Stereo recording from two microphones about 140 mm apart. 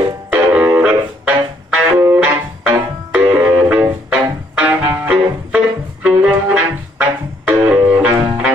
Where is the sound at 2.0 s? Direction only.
20° right (ahead or behind).